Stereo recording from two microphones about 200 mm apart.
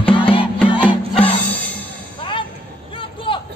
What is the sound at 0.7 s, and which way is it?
Music, 25° left (ahead or behind).